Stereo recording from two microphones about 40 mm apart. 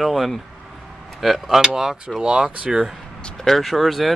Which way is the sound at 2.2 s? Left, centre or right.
Right.